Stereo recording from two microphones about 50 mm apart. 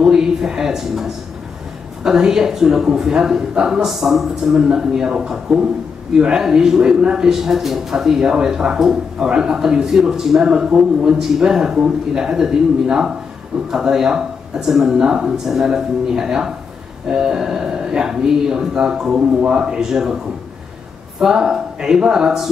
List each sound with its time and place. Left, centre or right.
0.0 s speech: centre
21.2 s speech: centre